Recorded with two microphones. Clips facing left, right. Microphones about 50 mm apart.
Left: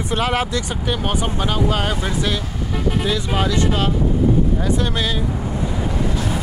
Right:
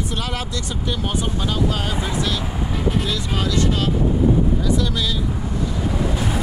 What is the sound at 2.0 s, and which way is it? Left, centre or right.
Speech, centre.